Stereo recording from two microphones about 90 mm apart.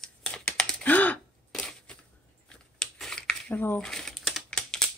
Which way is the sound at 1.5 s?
10° left (ahead or behind).